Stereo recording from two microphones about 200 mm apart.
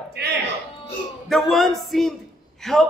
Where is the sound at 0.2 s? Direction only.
55° right (ahead or behind).